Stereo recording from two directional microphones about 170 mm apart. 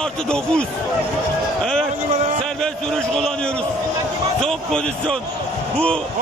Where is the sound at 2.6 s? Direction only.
5° left (ahead or behind).